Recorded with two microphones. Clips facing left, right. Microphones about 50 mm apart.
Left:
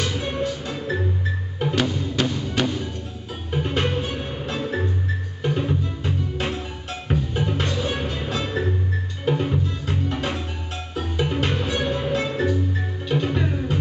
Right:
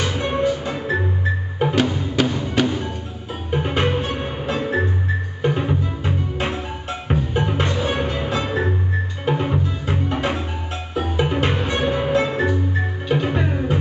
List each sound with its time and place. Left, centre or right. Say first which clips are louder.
0.0 s music: right 5 dB; centre